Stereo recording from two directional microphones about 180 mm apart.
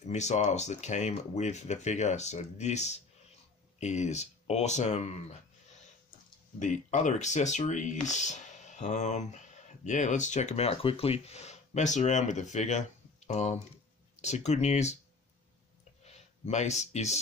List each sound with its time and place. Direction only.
0.0 s speech: 40° left (ahead or behind)
6.6 s speech: 40° left (ahead or behind)
16.1 s speech: 35° left (ahead or behind)